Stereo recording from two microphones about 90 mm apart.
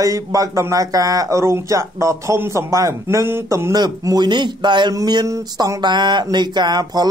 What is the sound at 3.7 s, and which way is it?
A man's voice, 50° right (ahead or behind).